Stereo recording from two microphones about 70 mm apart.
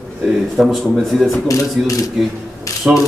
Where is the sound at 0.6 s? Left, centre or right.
Centre.